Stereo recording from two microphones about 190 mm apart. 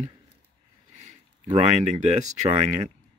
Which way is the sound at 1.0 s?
40° right (ahead or behind).